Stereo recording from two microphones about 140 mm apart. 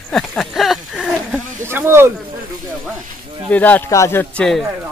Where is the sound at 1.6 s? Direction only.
15° right (ahead or behind).